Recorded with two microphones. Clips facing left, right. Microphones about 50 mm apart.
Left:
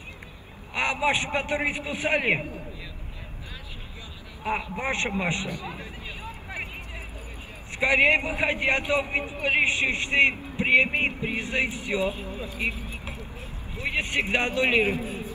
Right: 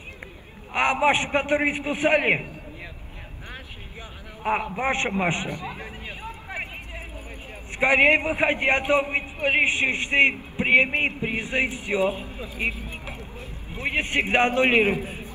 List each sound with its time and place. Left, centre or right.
0.7 s a man's voice: right
4.4 s a man's voice: right
5.8 s vehicle: right
7.8 s a man's voice: right